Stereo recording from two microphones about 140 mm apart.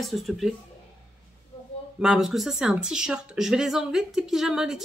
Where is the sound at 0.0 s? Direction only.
Centre (ahead or behind).